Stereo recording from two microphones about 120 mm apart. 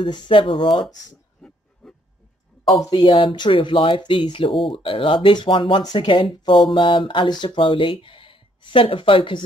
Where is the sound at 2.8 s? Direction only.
35° left (ahead or behind).